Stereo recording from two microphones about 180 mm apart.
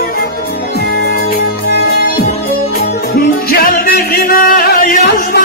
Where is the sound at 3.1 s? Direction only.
55° left (ahead or behind).